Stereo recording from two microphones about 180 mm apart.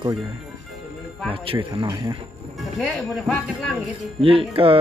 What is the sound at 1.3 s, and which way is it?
Speech, 30° right (ahead or behind).